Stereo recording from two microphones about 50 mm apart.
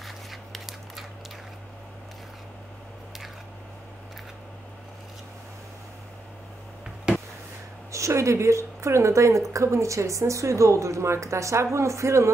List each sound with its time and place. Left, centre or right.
0.0 s scissors: centre
7.1 s a sound: centre
7.9 s a woman's voice: right